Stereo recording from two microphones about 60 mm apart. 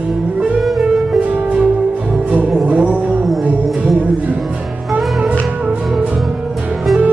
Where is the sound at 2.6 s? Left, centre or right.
Right.